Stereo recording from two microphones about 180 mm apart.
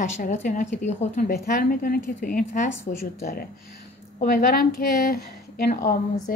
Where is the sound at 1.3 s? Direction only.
55° left (ahead or behind).